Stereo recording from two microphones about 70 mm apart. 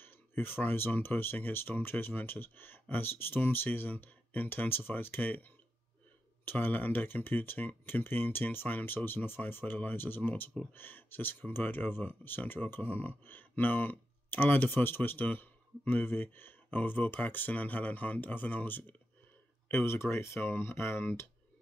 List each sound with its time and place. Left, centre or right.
0.0 s speech: left
19.7 s speech: left